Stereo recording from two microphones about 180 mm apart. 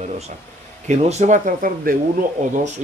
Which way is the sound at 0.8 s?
40° right (ahead or behind).